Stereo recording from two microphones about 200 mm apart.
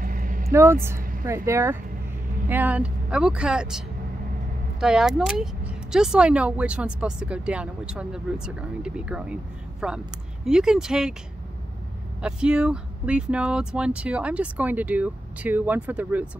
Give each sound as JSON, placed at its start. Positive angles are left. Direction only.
{"t": 0.0, "sound": "vehicle", "side_deg": -45}
{"t": 0.5, "sound": "speech", "side_deg": -15}
{"t": 12.2, "sound": "speech", "side_deg": -5}